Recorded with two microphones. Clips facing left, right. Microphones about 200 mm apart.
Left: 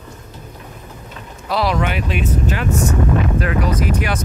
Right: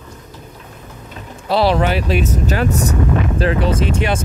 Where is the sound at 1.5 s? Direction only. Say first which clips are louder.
Right 4 dB; 30° right (ahead or behind).